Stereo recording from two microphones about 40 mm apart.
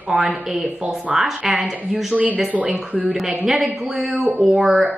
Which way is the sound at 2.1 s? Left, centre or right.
Right.